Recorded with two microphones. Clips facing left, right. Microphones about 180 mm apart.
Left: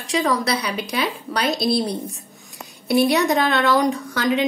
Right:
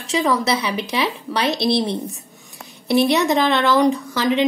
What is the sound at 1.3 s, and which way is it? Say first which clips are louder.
Speech: right 1 dB; 25° right (ahead or behind).